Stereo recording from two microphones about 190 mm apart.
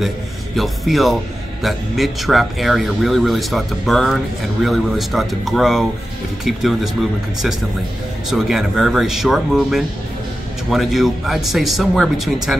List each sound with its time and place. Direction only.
0.6 s speech: centre (ahead or behind)